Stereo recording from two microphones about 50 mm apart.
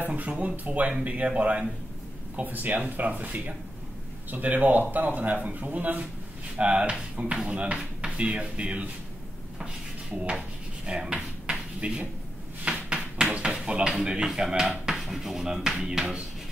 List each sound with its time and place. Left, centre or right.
0.1 s speech: right
2.3 s speech: right
6.5 s speech: right
10.9 s drawer open or close: right
12.6 s a sound: centre
13.4 s speech: centre